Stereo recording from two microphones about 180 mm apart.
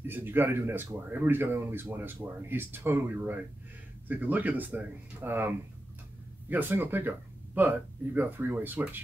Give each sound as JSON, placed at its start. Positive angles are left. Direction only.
{"t": 0.0, "sound": "speech", "side_deg": -10}
{"t": 6.5, "sound": "speech", "side_deg": -10}